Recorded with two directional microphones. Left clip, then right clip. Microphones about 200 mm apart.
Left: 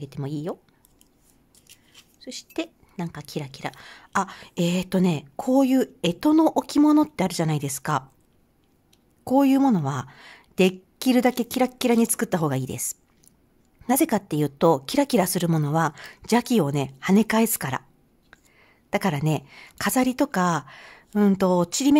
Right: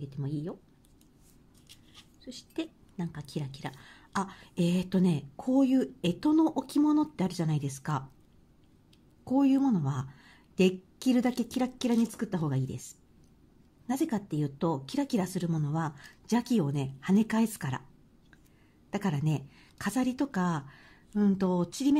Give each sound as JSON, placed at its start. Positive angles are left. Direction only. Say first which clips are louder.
{"t": 0.0, "sound": "speech", "louder": "left 7 dB", "side_deg": 35}
{"t": 2.2, "sound": "speech", "louder": "left 7 dB", "side_deg": 30}
{"t": 9.2, "sound": "speech", "louder": "left 7 dB", "side_deg": 35}
{"t": 18.9, "sound": "speech", "louder": "left 9 dB", "side_deg": 30}